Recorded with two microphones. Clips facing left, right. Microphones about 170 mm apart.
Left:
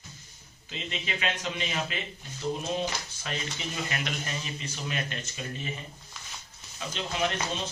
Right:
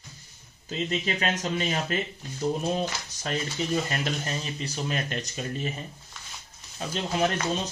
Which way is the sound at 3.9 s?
35° right (ahead or behind).